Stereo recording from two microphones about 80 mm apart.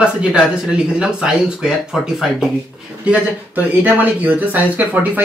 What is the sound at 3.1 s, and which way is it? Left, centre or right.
Speech, right.